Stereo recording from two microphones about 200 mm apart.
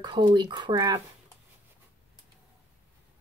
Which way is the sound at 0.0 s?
25° right (ahead or behind).